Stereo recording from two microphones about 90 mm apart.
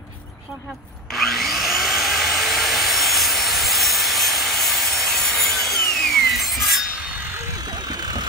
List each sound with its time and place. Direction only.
1.1 s wood: centre (ahead or behind)
7.9 s vehicle: 50° right (ahead or behind)